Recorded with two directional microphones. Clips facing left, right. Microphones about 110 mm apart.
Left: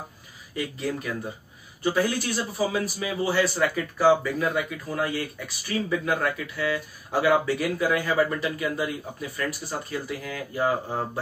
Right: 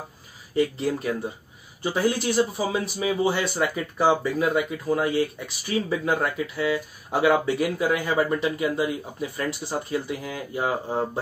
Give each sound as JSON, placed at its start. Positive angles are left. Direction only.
{"t": 0.6, "sound": "speech", "side_deg": -30}